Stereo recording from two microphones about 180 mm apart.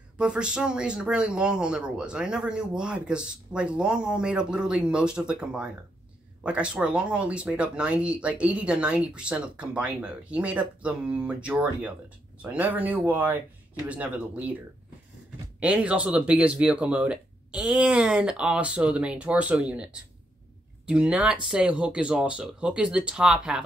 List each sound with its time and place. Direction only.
0.2 s speech: 5° right (ahead or behind)
15.6 s speech: 5° right (ahead or behind)